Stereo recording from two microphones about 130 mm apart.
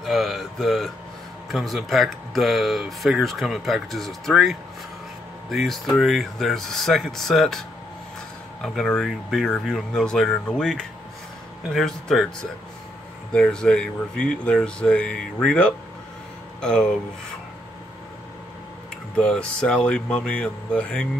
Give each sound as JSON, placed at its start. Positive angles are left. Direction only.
{"t": 0.0, "sound": "speech", "side_deg": 0}
{"t": 13.3, "sound": "speech", "side_deg": 5}
{"t": 19.1, "sound": "speech", "side_deg": 5}